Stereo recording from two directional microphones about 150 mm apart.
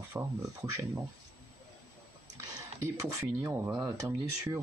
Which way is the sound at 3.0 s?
20° right (ahead or behind).